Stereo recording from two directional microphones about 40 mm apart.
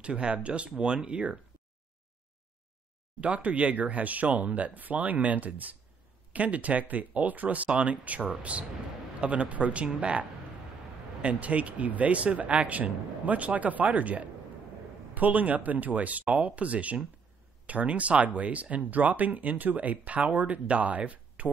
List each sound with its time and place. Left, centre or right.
0.0 s speech: right
3.2 s speech: right
11.2 s speech: right